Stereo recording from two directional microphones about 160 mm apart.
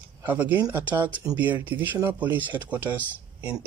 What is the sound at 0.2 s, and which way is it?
Speech, 10° right (ahead or behind).